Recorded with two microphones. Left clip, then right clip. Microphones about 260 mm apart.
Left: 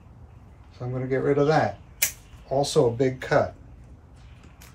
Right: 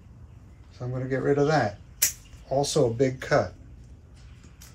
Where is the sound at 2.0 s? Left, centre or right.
Centre.